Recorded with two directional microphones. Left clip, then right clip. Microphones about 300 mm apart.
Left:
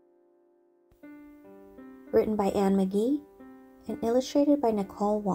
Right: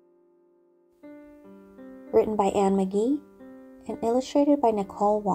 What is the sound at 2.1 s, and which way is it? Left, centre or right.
Speech, centre.